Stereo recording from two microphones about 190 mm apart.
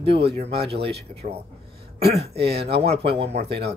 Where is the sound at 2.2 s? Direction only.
60° right (ahead or behind).